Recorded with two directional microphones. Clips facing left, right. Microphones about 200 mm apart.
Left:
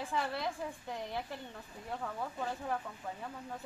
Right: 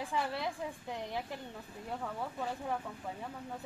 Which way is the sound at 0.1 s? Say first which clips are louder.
Even; 10° right (ahead or behind).